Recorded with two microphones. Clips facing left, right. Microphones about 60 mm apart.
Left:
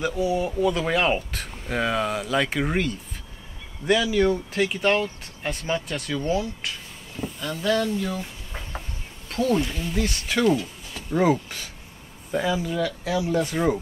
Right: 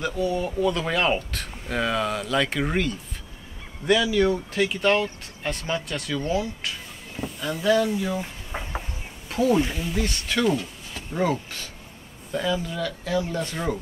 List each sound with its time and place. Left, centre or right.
0.0 s speech: centre
8.5 s a sound: centre
9.3 s speech: centre
12.3 s speech: centre